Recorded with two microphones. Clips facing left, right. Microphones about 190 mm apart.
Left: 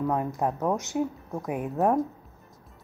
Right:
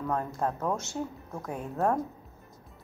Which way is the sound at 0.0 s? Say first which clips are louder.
Left 4 dB; 15° left (ahead or behind).